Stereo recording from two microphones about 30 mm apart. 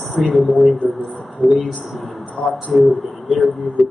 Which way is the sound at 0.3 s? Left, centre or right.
Centre.